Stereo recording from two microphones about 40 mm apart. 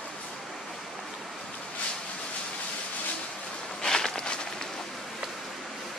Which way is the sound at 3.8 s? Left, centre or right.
Centre.